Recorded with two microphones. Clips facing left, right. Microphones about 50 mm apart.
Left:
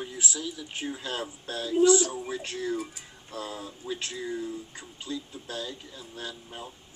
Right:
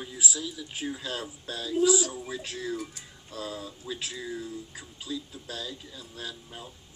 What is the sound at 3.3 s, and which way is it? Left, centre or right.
Speech, centre.